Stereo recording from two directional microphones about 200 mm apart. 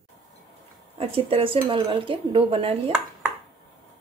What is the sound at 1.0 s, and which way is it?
Speech, 25° right (ahead or behind).